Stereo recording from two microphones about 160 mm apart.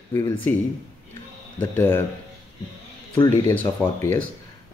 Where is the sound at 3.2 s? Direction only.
10° left (ahead or behind).